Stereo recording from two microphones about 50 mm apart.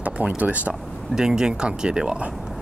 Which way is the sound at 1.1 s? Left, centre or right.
Centre.